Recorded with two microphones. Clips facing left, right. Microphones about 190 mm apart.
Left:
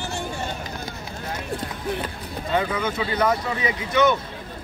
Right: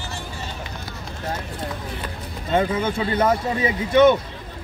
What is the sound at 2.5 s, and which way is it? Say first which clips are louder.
Speech: right 3 dB; 25° right (ahead or behind).